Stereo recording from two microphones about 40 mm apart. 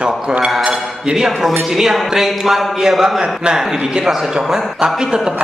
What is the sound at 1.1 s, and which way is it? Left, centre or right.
A man's voice, centre.